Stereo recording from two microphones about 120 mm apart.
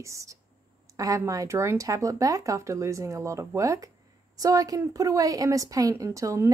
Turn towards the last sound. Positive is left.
turn(degrees=-25)  # may be behind; listen again after turning